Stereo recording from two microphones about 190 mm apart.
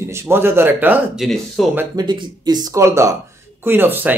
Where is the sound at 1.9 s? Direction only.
25° right (ahead or behind).